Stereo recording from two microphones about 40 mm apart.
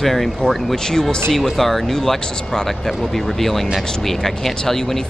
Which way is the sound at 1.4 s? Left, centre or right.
Centre.